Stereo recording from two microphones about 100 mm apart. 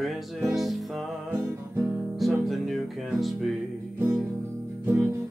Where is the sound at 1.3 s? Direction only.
25° right (ahead or behind).